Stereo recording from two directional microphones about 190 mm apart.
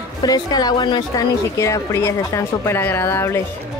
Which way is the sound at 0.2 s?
20° left (ahead or behind).